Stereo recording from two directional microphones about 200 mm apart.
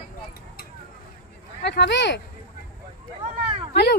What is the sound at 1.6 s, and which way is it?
Speech, 60° left (ahead or behind).